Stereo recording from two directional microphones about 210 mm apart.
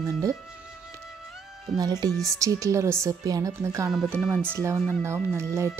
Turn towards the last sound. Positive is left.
turn(degrees=-10)  # may be behind; listen again after turning